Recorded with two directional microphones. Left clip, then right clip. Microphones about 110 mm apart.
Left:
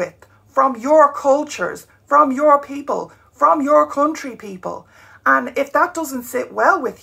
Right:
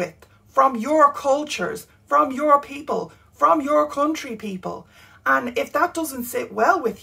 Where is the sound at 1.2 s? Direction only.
15° right (ahead or behind).